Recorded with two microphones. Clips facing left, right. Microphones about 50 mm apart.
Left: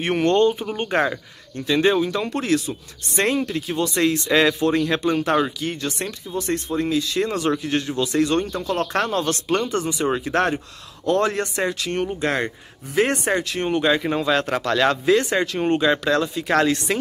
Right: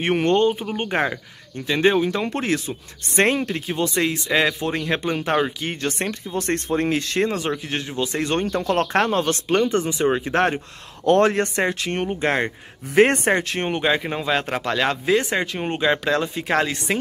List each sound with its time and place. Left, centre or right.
0.0 s speech: centre
3.9 s speech: centre
5.6 s speech: right
6.3 s speech: right
7.2 s speech: centre; by 9.2 s right
9.2 s speech: centre
11.1 s speech: right
13.7 s speech: centre